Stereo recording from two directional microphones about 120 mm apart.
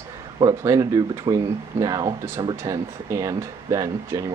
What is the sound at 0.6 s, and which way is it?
Speech, 30° right (ahead or behind).